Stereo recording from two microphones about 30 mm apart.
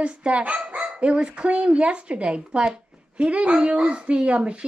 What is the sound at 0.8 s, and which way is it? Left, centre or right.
A woman's voice, right.